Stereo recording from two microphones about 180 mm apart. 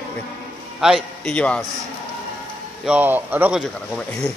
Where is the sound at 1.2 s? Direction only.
5° left (ahead or behind).